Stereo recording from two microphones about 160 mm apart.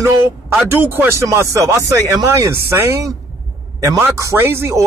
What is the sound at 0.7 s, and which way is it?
A man's voice, 15° right (ahead or behind).